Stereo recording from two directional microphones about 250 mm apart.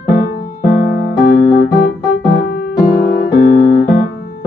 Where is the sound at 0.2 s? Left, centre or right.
Left.